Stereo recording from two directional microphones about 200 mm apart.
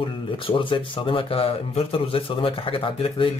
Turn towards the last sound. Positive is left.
turn(degrees=25)  # may be behind; listen again after turning